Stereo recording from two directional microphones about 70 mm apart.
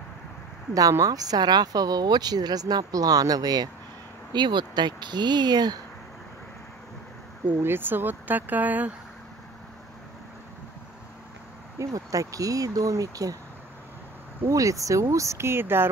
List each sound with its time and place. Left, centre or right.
0.7 s speech: right
4.3 s speech: right
7.6 s speech: right
11.8 s speech: right
14.5 s speech: right